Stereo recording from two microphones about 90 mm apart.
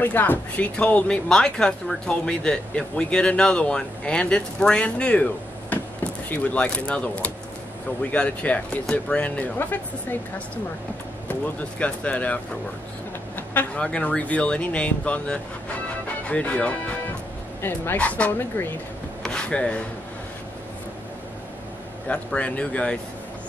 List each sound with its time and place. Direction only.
0.0 s a woman's voice: 20° left (ahead or behind)
11.8 s a woman's voice: 15° left (ahead or behind)
13.5 s a woman's voice: 15° left (ahead or behind)
17.6 s speech: 25° left (ahead or behind)
17.9 s a woman's voice: 15° left (ahead or behind)
19.2 s a sound: 10° left (ahead or behind)
22.0 s a woman's voice: 15° left (ahead or behind)